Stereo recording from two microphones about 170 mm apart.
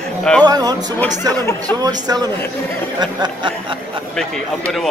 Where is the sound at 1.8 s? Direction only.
20° right (ahead or behind).